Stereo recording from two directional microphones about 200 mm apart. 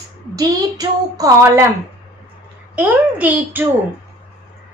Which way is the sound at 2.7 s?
10° right (ahead or behind).